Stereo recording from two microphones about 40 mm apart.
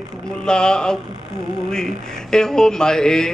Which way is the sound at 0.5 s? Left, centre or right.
Centre.